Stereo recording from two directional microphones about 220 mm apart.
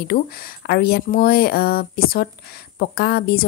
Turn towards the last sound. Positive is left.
turn(degrees=45)  # may be behind; listen again after turning